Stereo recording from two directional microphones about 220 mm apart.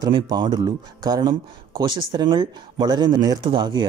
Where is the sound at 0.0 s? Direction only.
20° right (ahead or behind).